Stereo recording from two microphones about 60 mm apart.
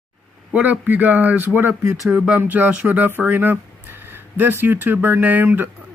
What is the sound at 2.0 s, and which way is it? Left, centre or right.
Speech, centre.